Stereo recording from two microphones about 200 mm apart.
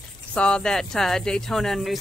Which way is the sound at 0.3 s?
5° left (ahead or behind).